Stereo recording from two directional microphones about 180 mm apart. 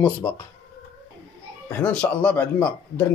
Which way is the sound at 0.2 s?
10° left (ahead or behind).